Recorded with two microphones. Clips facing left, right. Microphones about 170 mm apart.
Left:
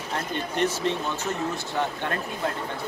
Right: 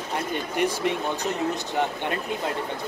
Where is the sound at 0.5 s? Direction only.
15° right (ahead or behind).